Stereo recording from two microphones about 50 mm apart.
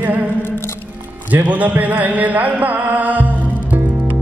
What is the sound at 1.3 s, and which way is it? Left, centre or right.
Speech, right.